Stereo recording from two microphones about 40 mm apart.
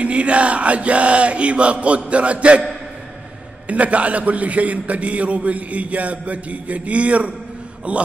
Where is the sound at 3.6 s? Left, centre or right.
Right.